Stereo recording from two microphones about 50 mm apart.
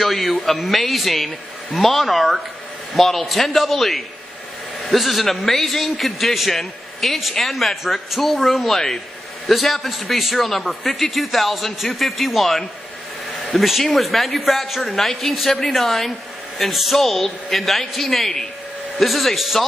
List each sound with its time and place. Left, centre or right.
0.0 s a man's voice: centre